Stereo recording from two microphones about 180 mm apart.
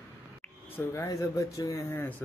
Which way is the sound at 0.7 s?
15° left (ahead or behind).